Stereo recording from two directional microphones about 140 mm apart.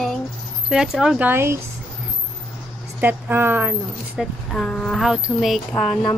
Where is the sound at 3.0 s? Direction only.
15° right (ahead or behind).